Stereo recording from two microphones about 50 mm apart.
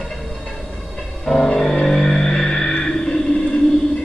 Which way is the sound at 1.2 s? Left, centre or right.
Centre.